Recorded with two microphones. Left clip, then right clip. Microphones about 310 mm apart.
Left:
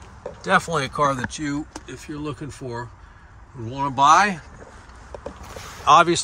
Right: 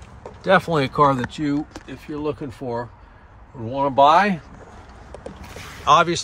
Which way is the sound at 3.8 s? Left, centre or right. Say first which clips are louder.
Right 1 dB; centre.